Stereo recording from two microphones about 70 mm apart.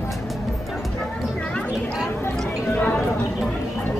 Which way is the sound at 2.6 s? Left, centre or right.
Left.